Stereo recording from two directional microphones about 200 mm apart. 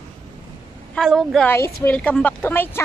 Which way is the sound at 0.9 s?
Centre (ahead or behind).